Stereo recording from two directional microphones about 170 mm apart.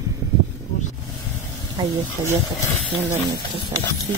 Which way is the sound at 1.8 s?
25° right (ahead or behind).